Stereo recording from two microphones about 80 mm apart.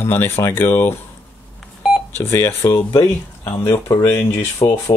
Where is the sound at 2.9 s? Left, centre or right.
Left.